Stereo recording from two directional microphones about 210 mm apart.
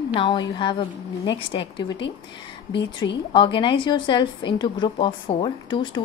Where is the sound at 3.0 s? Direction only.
20° left (ahead or behind).